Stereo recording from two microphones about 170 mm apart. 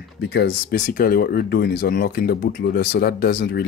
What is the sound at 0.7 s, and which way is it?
Speech, 55° left (ahead or behind).